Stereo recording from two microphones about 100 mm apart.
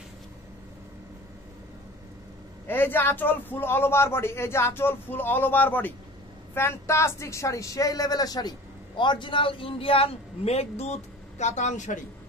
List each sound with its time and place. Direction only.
2.7 s speech: 20° left (ahead or behind); by 11.0 s 90° left